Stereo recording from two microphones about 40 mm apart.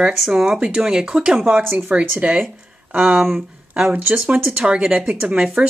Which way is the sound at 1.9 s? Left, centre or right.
Right.